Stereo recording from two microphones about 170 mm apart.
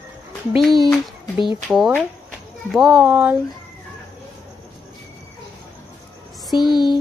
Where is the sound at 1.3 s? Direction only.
30° left (ahead or behind).